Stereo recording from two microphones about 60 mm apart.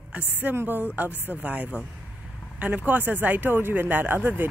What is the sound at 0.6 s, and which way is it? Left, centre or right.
Speech, right.